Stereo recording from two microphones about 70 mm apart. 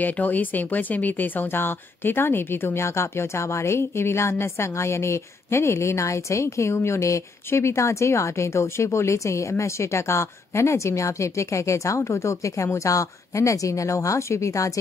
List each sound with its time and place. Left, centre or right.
0.0 s speech: left